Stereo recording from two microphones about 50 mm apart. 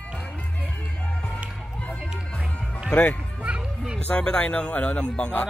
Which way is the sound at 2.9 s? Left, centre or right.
Left.